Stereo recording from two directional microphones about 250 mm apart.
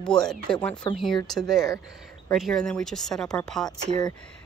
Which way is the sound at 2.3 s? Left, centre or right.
Centre.